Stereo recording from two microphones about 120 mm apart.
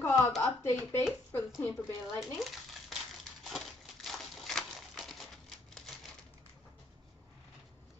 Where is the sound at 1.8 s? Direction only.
Centre (ahead or behind).